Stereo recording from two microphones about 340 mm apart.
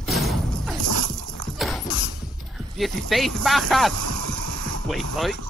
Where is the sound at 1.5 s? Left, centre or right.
Centre.